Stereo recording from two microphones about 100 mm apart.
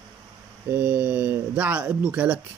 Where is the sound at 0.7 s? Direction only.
15° right (ahead or behind).